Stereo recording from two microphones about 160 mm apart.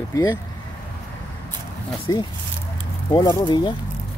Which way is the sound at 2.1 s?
25° left (ahead or behind).